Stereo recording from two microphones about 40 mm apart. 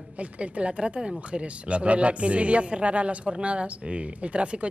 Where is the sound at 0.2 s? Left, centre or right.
Right.